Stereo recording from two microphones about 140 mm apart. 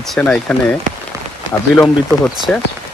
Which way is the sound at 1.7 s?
15° left (ahead or behind).